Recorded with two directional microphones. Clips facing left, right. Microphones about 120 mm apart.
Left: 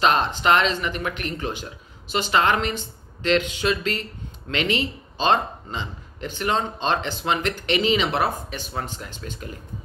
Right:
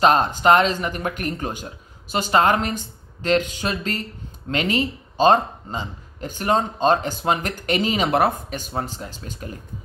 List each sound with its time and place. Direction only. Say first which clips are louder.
0.0 s speech: right 4 dB; 40° right (ahead or behind)